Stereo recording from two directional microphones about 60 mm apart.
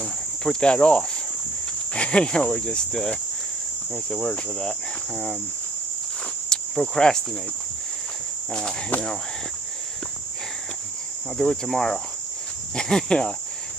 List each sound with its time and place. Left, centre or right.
0.0 s cricket: centre
6.5 s cricket: centre
8.9 s speech: left
11.3 s cricket: centre